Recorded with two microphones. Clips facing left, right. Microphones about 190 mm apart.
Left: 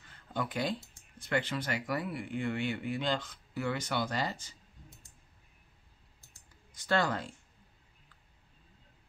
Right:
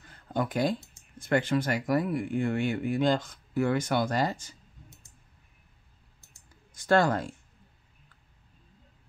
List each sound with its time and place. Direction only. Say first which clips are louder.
0.3 s speech: right 6 dB; 45° right (ahead or behind)
6.7 s speech: right 7 dB; 45° right (ahead or behind)